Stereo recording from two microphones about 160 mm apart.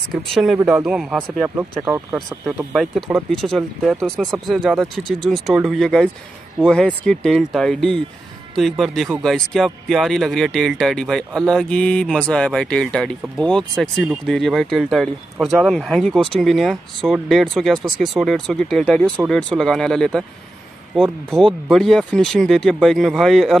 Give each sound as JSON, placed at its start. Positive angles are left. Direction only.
{"t": 0.1, "sound": "speech", "side_deg": 0}
{"t": 1.6, "sound": "speech", "side_deg": -15}
{"t": 2.7, "sound": "speech", "side_deg": 0}